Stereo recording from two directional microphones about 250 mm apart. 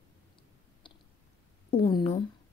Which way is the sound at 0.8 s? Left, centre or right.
Centre.